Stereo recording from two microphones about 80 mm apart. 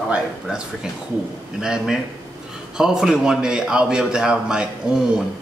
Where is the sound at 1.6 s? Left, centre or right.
Centre.